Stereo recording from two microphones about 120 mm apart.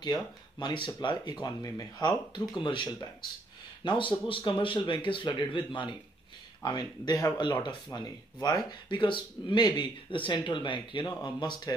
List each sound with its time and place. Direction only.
0.0 s speech: 35° left (ahead or behind)
8.8 s speech: 40° left (ahead or behind)